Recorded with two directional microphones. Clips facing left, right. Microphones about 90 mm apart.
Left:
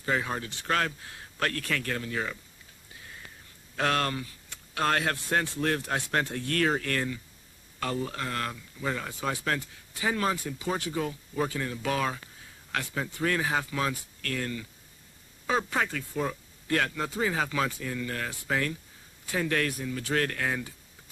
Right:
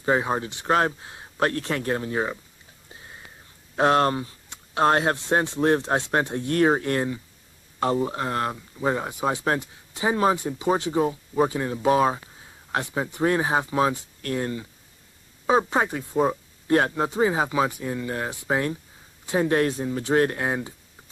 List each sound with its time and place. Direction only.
0.0 s speech: 30° right (ahead or behind)
2.9 s a sound: 30° right (ahead or behind)
3.7 s speech: 25° right (ahead or behind)